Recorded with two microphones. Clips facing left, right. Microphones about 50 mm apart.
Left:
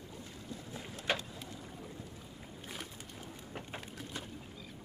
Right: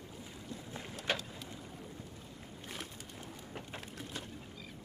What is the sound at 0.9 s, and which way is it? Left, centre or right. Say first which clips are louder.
Boat: left 1 dB; left.